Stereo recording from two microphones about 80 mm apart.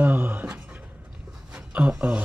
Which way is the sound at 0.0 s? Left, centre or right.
Right.